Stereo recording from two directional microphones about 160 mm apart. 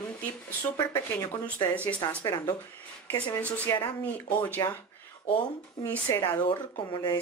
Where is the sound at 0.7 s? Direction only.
20° left (ahead or behind).